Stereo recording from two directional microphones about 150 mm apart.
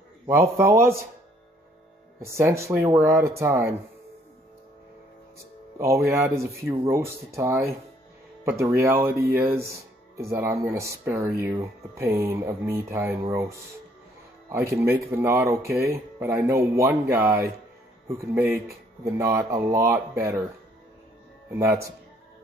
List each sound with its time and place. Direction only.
0.3 s speech: 15° right (ahead or behind)
2.1 s speech: 20° right (ahead or behind)
5.8 s speech: 20° right (ahead or behind)
14.5 s speech: 15° right (ahead or behind)
21.5 s speech: 20° right (ahead or behind)